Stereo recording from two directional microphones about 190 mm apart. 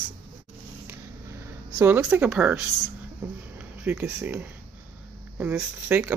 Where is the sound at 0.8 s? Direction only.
15° right (ahead or behind).